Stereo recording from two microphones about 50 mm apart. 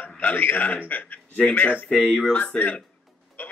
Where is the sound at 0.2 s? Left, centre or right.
Left.